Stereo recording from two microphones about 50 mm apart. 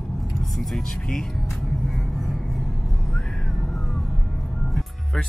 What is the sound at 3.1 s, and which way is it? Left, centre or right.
Music, centre.